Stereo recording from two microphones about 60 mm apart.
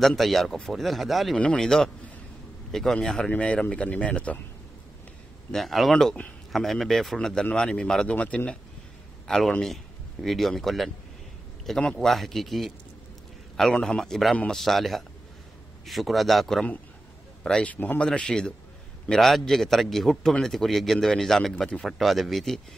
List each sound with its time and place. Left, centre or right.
0.0 s a man's voice: centre
1.3 s speech: centre
1.6 s speech: centre
5.5 s a man's voice: centre
9.3 s a man's voice: centre
17.4 s a man's voice: centre
17.7 s speech: left
18.0 s speech: centre
19.0 s a man's voice: centre